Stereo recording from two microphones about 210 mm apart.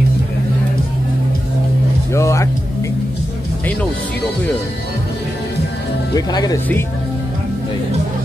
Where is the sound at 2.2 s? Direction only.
15° left (ahead or behind).